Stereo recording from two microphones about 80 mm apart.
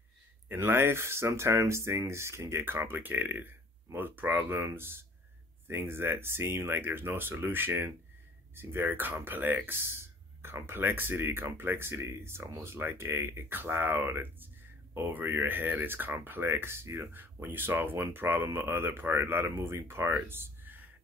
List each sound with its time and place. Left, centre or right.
0.5 s speech: right